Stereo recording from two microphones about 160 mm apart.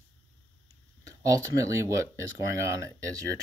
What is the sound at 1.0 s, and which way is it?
Speech, 20° right (ahead or behind).